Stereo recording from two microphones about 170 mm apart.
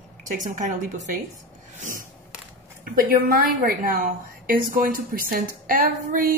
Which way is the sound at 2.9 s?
60° right (ahead or behind).